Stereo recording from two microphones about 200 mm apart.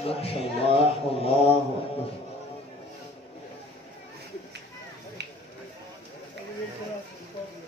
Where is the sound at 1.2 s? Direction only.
30° left (ahead or behind).